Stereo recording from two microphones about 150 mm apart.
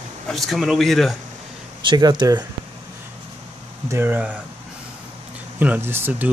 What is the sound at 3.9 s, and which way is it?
Speech, 15° right (ahead or behind).